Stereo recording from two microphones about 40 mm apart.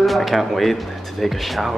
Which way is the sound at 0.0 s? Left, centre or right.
Centre.